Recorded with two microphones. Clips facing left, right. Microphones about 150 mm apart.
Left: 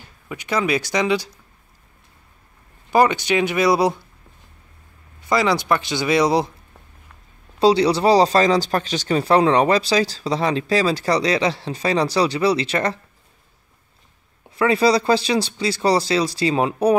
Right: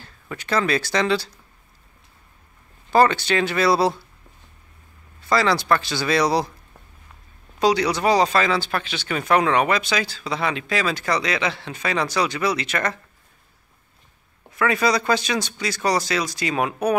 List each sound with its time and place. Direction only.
0.0 s speech: 15° left (ahead or behind)
2.9 s speech: 15° left (ahead or behind)
5.2 s speech: 20° left (ahead or behind)
7.5 s speech: 30° left (ahead or behind)
14.5 s speech: 30° left (ahead or behind)